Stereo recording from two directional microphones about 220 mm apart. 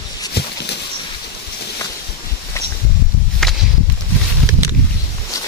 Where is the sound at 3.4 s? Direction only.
Centre (ahead or behind).